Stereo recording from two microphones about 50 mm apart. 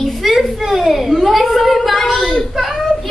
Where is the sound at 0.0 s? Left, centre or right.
Centre.